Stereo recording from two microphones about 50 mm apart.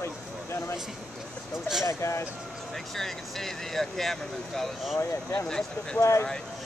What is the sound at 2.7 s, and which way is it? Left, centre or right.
Speech, centre.